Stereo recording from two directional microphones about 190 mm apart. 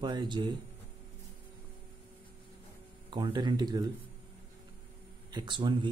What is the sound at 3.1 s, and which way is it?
Speech, 25° right (ahead or behind).